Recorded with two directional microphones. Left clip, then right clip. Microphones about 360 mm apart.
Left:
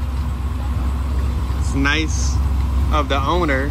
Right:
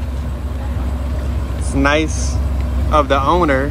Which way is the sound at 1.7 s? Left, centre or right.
Centre.